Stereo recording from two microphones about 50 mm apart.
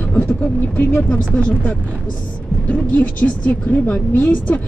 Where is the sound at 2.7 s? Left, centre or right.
Left.